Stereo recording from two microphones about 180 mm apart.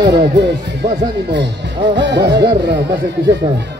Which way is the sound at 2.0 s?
75° right (ahead or behind).